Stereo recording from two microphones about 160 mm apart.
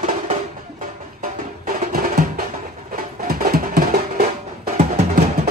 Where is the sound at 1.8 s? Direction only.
60° right (ahead or behind).